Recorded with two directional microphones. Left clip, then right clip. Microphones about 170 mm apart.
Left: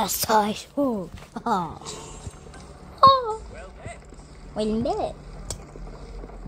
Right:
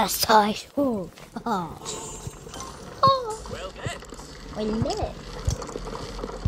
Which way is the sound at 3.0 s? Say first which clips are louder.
Left 5 dB; 15° left (ahead or behind).